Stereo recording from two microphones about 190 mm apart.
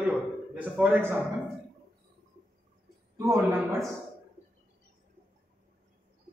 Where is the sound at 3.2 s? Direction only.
15° right (ahead or behind).